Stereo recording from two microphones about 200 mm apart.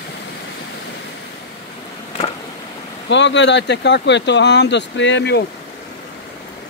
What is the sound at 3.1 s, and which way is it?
Speech, 60° left (ahead or behind).